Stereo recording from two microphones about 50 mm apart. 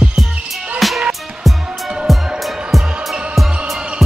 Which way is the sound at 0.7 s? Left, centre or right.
Centre.